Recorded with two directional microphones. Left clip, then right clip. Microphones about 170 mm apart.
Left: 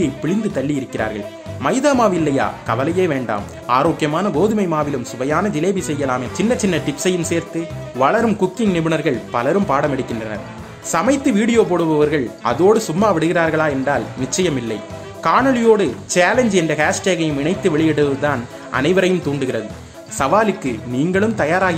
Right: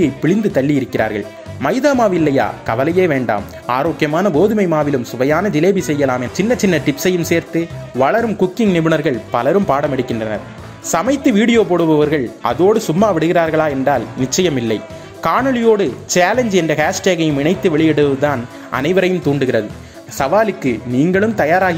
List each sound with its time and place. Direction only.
0.0 s speech: 25° right (ahead or behind)